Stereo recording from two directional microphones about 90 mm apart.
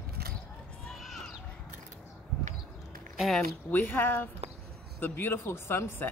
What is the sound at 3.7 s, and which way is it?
Speech, 20° left (ahead or behind).